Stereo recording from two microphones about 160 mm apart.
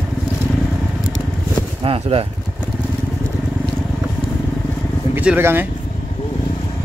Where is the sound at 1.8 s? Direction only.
35° right (ahead or behind).